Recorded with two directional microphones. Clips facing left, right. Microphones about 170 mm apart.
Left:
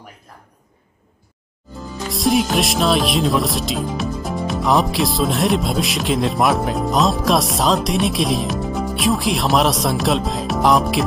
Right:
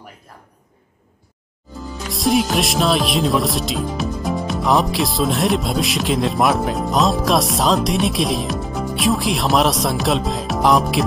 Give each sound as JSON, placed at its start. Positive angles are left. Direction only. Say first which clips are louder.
{"t": 1.9, "sound": "music", "louder": "left 1 dB", "side_deg": 0}